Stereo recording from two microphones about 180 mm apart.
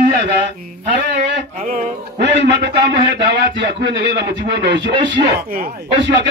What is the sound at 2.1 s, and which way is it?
A man's voice, 75° right (ahead or behind).